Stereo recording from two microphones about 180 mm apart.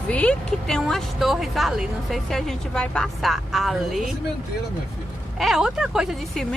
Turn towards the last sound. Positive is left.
turn(degrees=0)  # may be behind; listen again after turning